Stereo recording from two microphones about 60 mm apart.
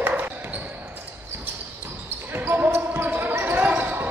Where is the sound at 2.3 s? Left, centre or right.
Right.